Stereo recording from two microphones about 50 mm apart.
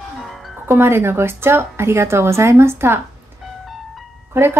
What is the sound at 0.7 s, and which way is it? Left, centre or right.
A woman's voice, right.